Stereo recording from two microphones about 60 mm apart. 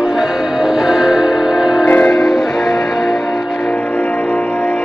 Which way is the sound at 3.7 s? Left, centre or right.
Left.